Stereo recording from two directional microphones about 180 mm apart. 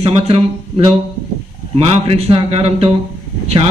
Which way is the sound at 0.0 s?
35° right (ahead or behind).